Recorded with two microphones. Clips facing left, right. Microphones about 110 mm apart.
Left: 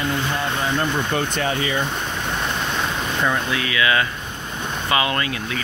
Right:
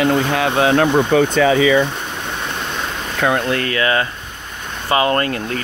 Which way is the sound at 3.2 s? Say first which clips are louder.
Right 7 dB; 60° right (ahead or behind).